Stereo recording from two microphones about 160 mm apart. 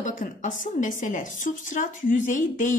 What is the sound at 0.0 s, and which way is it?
A woman's voice, 55° left (ahead or behind).